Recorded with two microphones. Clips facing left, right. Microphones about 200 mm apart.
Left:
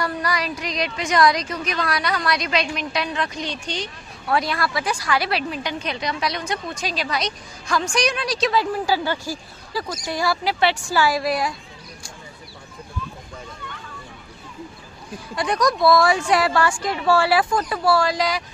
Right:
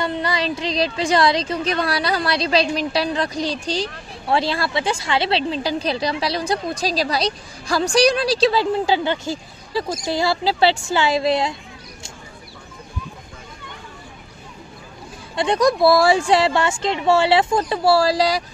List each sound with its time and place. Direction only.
0.0 s a woman's voice: 25° right (ahead or behind)
15.3 s a woman's voice: 25° right (ahead or behind)